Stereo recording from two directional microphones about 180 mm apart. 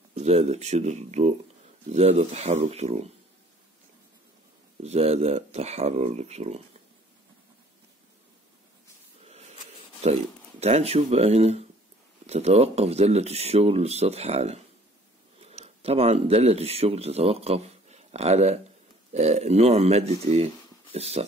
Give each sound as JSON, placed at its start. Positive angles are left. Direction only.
{"t": 0.1, "sound": "speech", "side_deg": -35}
{"t": 4.8, "sound": "speech", "side_deg": -35}
{"t": 9.2, "sound": "a sound", "side_deg": -35}
{"t": 10.0, "sound": "speech", "side_deg": -35}